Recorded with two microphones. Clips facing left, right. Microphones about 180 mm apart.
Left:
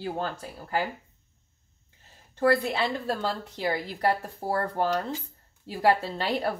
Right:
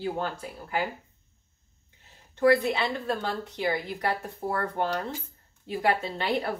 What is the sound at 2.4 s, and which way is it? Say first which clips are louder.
A woman's voice: right 1 dB; 35° left (ahead or behind).